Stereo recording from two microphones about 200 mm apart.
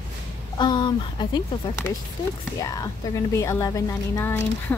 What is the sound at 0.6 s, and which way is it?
Speech, 20° left (ahead or behind).